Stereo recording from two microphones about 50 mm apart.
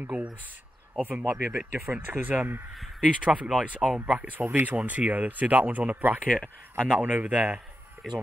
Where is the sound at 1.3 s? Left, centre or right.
Right.